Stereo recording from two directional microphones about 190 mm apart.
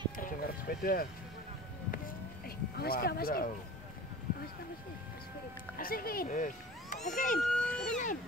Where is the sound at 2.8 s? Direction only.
55° left (ahead or behind).